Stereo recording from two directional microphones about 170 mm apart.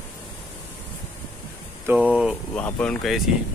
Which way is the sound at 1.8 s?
10° right (ahead or behind).